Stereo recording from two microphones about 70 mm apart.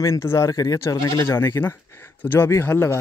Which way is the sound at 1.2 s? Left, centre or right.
Left.